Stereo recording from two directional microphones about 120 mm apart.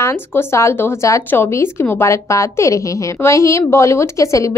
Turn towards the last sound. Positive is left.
turn(degrees=25)  # may be behind; listen again after turning